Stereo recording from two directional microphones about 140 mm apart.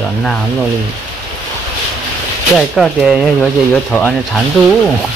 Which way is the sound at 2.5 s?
Centre (ahead or behind).